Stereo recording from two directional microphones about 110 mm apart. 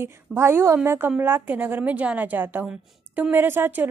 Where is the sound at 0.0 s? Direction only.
20° right (ahead or behind).